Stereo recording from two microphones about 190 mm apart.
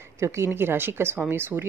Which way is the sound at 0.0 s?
15° right (ahead or behind).